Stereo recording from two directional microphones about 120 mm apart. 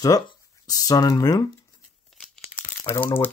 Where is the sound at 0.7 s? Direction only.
30° left (ahead or behind).